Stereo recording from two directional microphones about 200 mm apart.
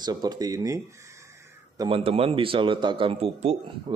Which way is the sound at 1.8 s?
25° right (ahead or behind).